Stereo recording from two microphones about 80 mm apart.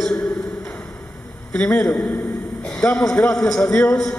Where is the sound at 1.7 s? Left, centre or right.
Centre.